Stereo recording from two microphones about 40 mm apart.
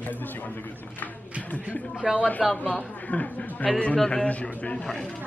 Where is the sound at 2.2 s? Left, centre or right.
Left.